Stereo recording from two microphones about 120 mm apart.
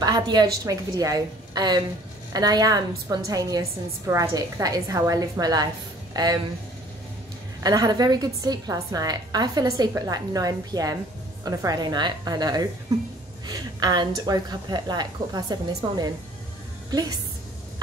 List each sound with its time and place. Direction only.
0.0 s a woman's voice: 35° right (ahead or behind)
7.6 s a woman's voice: 30° right (ahead or behind)